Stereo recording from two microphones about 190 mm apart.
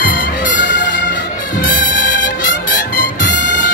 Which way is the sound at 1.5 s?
45° left (ahead or behind).